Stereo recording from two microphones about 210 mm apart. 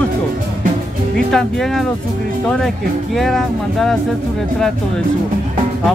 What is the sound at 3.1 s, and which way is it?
Speech, centre (ahead or behind).